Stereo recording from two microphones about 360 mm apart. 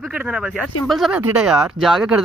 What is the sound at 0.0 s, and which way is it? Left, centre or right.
Speech, centre.